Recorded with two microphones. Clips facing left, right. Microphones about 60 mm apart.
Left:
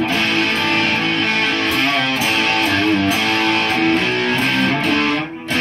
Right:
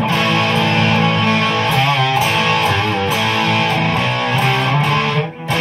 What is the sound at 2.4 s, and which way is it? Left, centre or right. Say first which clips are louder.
Music: right 2 dB; right.